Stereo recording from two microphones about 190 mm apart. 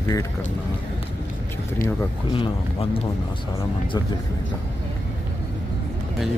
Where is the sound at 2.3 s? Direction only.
25° left (ahead or behind).